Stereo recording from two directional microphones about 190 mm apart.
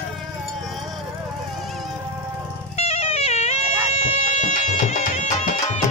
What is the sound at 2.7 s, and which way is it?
Music, 35° left (ahead or behind).